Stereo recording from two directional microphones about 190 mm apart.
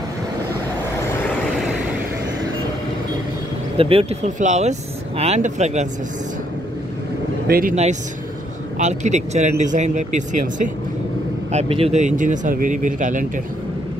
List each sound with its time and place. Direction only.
3.7 s speech: 30° right (ahead or behind)
7.4 s speech: 50° right (ahead or behind)
7.7 s speech: 35° right (ahead or behind)
11.5 s speech: 35° right (ahead or behind)